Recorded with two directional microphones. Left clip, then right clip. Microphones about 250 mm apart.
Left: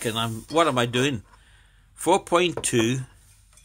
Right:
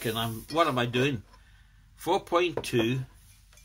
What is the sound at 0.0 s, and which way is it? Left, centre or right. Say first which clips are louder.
Speech: left 4 dB; left.